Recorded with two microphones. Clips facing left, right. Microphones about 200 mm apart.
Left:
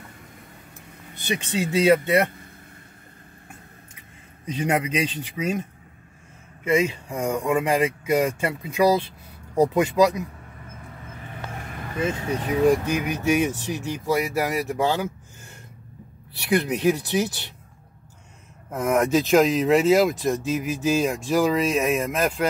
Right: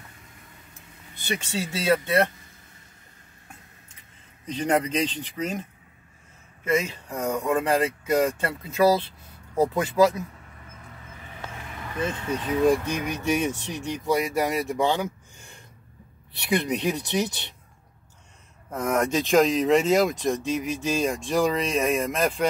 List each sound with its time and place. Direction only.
1.1 s speech: 15° left (ahead or behind)
4.5 s speech: 10° left (ahead or behind)
6.6 s speech: 15° left (ahead or behind)
12.0 s speech: 10° left (ahead or behind)
16.4 s speech: 5° left (ahead or behind)
18.7 s speech: 10° left (ahead or behind)